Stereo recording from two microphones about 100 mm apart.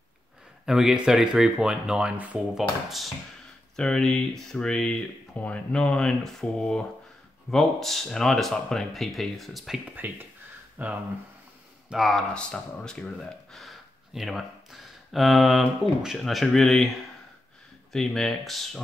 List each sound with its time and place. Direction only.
0.7 s speech: 5° right (ahead or behind)
3.7 s speech: 10° left (ahead or behind)
9.9 s speech: 20° right (ahead or behind)
11.9 s speech: centre (ahead or behind)
17.9 s speech: 5° left (ahead or behind)